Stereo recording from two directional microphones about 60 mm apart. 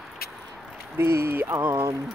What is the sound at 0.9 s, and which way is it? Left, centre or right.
Speech, right.